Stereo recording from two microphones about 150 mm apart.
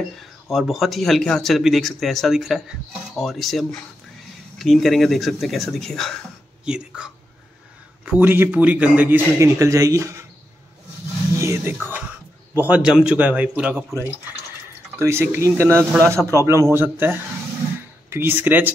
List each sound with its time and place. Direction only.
0.2 s a man's voice: centre (ahead or behind); by 10.2 s 20° right (ahead or behind)
11.3 s a man's voice: 20° right (ahead or behind)